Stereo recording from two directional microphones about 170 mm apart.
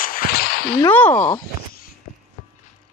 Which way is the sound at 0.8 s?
10° left (ahead or behind).